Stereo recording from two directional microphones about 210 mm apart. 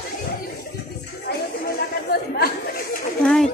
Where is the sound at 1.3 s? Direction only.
45° left (ahead or behind).